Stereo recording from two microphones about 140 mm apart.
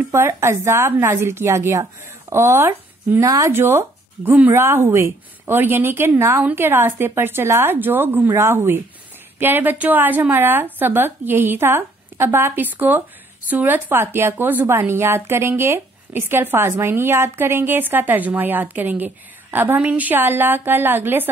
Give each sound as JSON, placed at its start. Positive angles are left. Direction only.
{"t": 0.1, "sound": "speech", "side_deg": -20}